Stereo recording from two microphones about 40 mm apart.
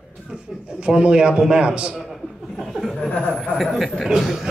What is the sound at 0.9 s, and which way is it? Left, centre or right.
A man's voice, right.